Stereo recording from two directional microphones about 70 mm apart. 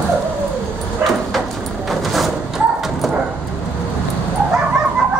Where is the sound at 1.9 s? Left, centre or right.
Centre.